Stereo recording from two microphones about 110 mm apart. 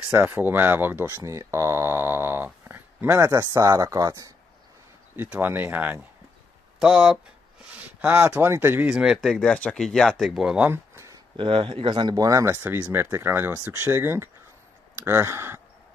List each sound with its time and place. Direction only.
0.1 s speech: 15° right (ahead or behind); by 4.3 s 35° right (ahead or behind)
5.3 s speech: 20° right (ahead or behind)
8.9 s speech: 5° right (ahead or behind)
10.7 s a sound: 25° right (ahead or behind)
11.3 s speech: 50° right (ahead or behind); by 15.6 s 25° right (ahead or behind)